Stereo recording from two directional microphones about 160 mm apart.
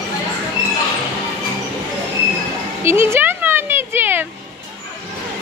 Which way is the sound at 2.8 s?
15° right (ahead or behind).